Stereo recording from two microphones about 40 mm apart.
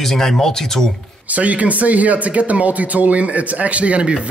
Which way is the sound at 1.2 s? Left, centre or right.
Right.